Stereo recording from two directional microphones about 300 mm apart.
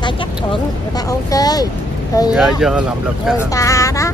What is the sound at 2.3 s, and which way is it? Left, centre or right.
Speech, centre.